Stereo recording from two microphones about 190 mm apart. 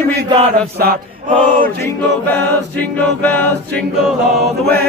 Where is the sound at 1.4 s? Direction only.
10° left (ahead or behind).